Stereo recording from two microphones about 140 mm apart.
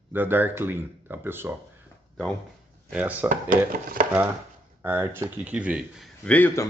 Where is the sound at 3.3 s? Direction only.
75° right (ahead or behind).